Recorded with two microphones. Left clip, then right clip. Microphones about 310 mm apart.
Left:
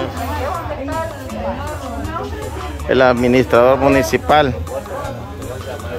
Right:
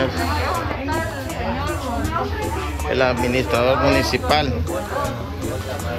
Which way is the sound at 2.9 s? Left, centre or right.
Left.